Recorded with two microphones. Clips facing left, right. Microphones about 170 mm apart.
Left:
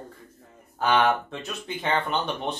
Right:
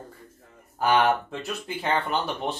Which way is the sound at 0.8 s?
10° right (ahead or behind).